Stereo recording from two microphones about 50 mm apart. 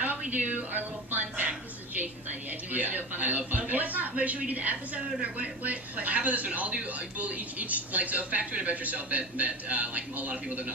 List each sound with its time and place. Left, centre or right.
0.3 s speech: right
2.7 s speech: right